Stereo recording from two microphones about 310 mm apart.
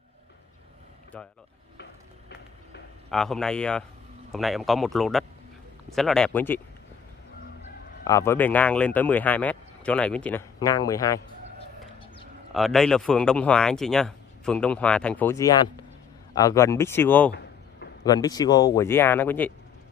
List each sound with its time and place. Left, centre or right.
1.1 s speech: centre
1.8 s a sound: left
3.1 s speech: centre
8.0 s speech: centre
12.5 s speech: centre